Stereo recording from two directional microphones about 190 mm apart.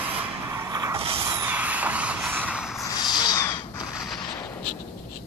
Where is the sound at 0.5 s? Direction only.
15° right (ahead or behind).